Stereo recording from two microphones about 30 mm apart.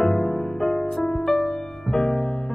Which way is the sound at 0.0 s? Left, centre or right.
Centre.